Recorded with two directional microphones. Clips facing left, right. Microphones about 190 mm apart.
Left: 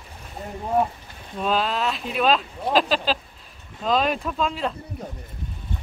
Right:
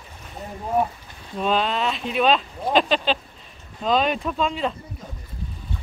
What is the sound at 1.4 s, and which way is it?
Speech, centre (ahead or behind).